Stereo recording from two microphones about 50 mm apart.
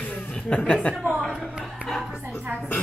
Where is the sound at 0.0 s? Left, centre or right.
Left.